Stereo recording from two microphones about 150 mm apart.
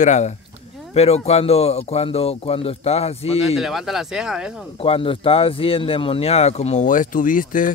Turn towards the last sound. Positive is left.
turn(degrees=65)  # may be behind; listen again after turning